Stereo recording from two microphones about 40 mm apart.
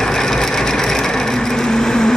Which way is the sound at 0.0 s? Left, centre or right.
Centre.